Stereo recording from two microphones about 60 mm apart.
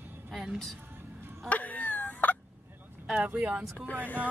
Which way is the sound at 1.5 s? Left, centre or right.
Left.